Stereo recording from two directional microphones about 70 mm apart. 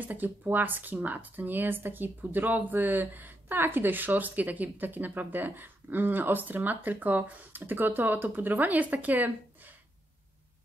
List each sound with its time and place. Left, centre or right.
0.0 s speech: right